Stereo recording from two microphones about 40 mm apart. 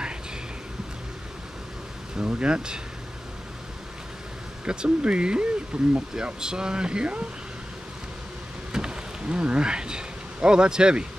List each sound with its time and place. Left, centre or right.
2.2 s speech: right
4.6 s speech: right
8.7 s a sound: right